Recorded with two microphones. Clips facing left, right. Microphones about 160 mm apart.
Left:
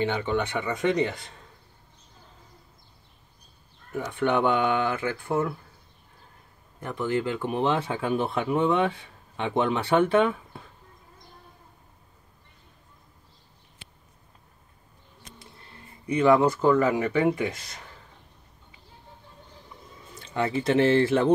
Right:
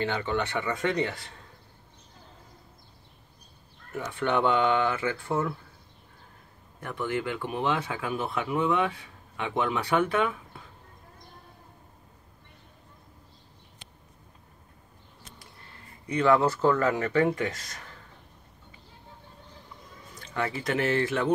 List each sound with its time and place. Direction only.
0.0 s speech: 15° left (ahead or behind)
4.1 s speech: 15° left (ahead or behind)
6.8 s speech: 20° left (ahead or behind)
16.1 s speech: 15° left (ahead or behind)
20.2 s speech: 20° left (ahead or behind)